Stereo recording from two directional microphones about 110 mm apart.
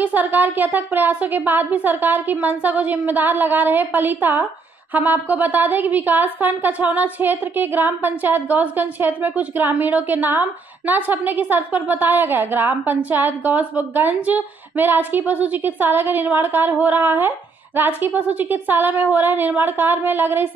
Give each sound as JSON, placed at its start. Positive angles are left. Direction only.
{"t": 0.0, "sound": "a woman's voice", "side_deg": -15}